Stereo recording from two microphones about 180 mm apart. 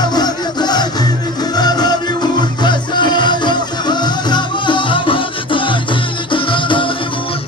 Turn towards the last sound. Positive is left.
turn(degrees=25)  # may be behind; listen again after turning